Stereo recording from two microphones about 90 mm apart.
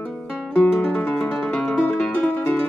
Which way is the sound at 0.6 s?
10° left (ahead or behind).